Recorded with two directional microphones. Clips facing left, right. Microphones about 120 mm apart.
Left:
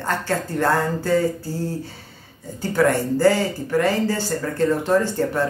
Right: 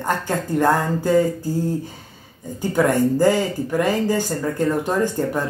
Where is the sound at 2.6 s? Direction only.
15° right (ahead or behind).